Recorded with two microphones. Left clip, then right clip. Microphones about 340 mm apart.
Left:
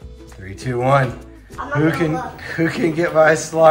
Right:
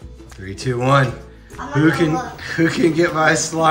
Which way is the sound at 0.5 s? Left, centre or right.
Centre.